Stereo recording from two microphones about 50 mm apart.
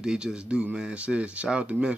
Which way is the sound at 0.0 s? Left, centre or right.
Centre.